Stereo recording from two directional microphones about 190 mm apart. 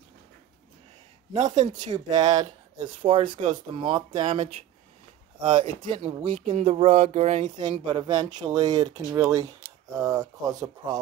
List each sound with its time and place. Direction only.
1.3 s speech: 35° right (ahead or behind)
1.9 s speech: 25° right (ahead or behind)